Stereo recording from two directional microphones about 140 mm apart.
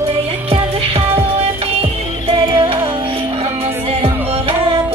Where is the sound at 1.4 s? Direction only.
45° right (ahead or behind).